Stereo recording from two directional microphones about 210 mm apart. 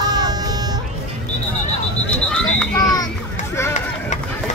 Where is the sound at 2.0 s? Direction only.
5° left (ahead or behind).